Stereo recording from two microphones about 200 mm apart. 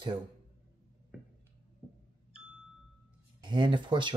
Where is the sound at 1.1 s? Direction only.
5° right (ahead or behind).